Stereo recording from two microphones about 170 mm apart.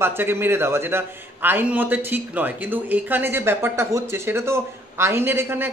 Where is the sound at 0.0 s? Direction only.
15° right (ahead or behind).